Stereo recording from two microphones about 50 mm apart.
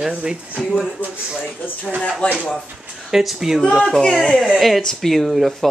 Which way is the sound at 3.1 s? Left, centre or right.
Centre.